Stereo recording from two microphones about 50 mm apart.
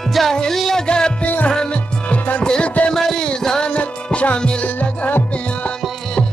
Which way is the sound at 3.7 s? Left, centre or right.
Left.